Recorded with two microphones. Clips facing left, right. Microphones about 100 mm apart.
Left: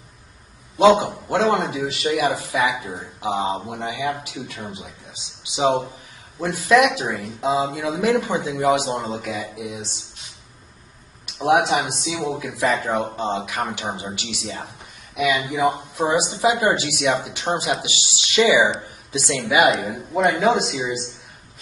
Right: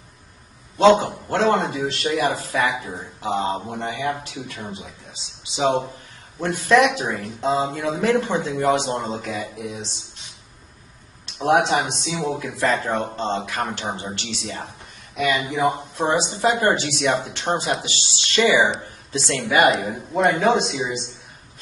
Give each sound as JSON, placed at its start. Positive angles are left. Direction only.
{"t": 0.7, "sound": "speech", "side_deg": 10}
{"t": 6.4, "sound": "speech", "side_deg": 0}
{"t": 11.2, "sound": "a sound", "side_deg": 5}
{"t": 11.6, "sound": "speech", "side_deg": 0}
{"t": 15.3, "sound": "speech", "side_deg": 15}
{"t": 16.0, "sound": "speech", "side_deg": 5}